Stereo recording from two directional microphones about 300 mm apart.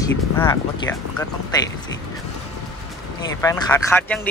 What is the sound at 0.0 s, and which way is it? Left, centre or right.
Speech, centre.